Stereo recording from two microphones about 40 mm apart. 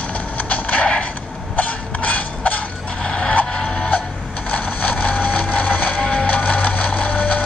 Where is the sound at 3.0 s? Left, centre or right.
Left.